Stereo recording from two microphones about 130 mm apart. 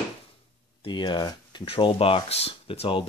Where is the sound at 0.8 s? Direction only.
35° left (ahead or behind).